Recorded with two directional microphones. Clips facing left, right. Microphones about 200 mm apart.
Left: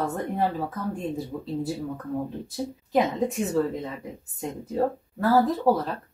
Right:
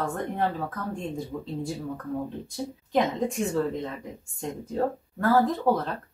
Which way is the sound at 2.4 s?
5° left (ahead or behind).